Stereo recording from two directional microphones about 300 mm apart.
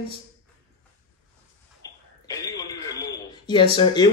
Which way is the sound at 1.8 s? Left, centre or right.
Centre.